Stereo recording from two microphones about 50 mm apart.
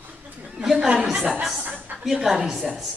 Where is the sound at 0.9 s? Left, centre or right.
Centre.